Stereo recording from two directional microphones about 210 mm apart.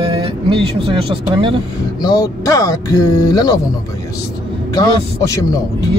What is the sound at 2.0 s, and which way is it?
Speech, 15° left (ahead or behind).